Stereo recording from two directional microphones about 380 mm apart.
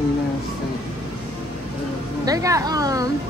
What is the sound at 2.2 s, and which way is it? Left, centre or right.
Speech, centre.